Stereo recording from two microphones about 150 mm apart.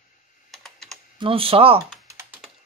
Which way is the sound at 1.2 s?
40° right (ahead or behind).